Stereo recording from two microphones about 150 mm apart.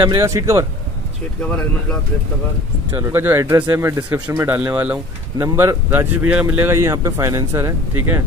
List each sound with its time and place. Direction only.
0.2 s speech: 20° right (ahead or behind)
2.9 s speech: 15° right (ahead or behind)